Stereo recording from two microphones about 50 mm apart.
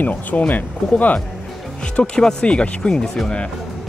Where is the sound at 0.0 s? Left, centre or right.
Left.